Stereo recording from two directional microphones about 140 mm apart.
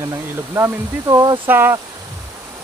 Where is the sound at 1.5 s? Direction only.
15° right (ahead or behind).